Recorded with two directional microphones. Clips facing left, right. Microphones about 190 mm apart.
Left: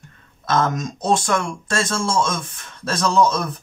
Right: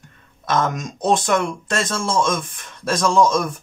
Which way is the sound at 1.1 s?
20° right (ahead or behind).